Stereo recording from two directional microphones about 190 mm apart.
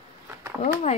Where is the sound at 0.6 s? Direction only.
35° left (ahead or behind).